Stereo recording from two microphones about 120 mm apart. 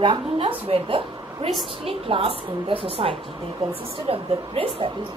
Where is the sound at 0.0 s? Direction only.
45° right (ahead or behind).